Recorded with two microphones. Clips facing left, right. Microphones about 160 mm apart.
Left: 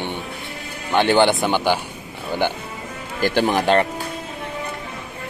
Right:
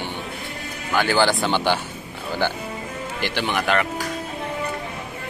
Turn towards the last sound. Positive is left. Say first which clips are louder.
# left 4 dB
turn(degrees=30)  # may be behind; listen again after turning